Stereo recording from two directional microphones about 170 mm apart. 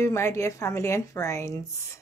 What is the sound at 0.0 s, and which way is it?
Speech, 15° left (ahead or behind).